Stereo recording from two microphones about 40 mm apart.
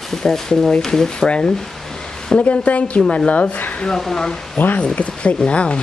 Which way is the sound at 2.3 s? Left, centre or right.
Left.